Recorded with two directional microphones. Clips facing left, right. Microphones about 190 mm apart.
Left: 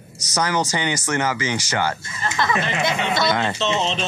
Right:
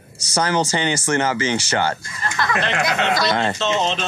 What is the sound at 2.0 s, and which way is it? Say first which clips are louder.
Speech: left 1 dB; 25° left (ahead or behind).